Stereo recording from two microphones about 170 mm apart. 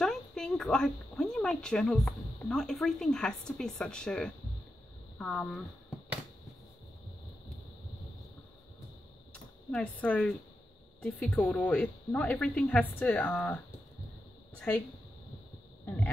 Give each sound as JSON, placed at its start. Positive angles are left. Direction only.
{"t": 0.0, "sound": "speech", "side_deg": 5}
{"t": 9.3, "sound": "speech", "side_deg": 5}